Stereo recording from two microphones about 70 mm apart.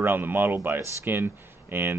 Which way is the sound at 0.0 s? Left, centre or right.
Right.